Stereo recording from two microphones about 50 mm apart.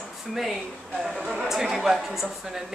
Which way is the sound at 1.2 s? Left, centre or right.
Centre.